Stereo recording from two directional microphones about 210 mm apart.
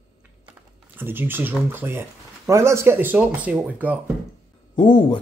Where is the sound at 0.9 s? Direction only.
10° right (ahead or behind).